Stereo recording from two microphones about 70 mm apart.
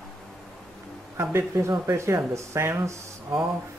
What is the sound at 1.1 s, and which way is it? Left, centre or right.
Speech, right.